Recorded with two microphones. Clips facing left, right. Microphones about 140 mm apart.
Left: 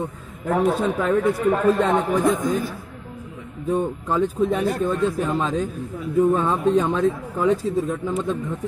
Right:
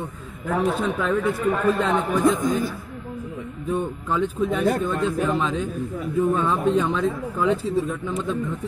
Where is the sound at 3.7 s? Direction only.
40° left (ahead or behind).